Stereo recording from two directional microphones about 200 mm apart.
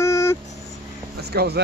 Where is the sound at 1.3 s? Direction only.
55° right (ahead or behind).